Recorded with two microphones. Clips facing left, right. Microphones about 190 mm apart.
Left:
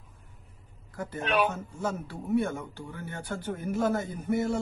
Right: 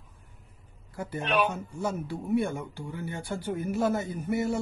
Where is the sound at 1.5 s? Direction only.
15° right (ahead or behind).